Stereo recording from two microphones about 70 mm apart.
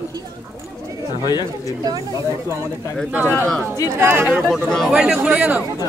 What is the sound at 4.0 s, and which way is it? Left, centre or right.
Speech, right.